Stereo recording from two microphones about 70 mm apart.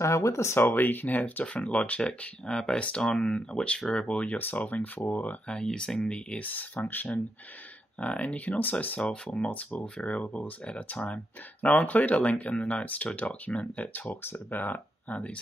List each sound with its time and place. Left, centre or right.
0.0 s speech: left
5.6 s speech: centre